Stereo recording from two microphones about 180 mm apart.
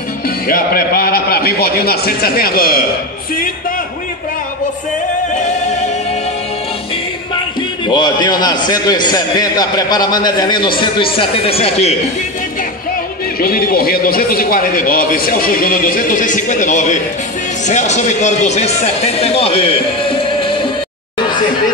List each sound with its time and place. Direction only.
0.5 s a man's voice: 55° left (ahead or behind)
7.8 s a man's voice: 25° left (ahead or behind)
13.4 s speech: 55° left (ahead or behind); by 20.6 s 30° left (ahead or behind)